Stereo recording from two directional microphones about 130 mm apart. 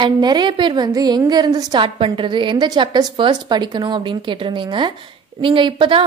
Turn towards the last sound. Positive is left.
turn(degrees=-40)  # may be behind; listen again after turning